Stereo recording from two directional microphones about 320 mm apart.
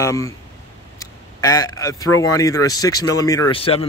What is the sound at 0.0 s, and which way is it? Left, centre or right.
Speech, centre.